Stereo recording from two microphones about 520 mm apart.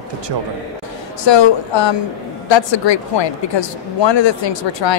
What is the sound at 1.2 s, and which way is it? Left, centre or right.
A woman's voice, left.